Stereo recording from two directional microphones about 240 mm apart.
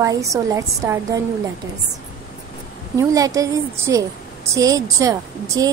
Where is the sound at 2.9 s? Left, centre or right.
Centre.